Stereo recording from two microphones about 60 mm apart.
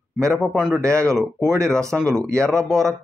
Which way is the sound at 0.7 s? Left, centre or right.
Right.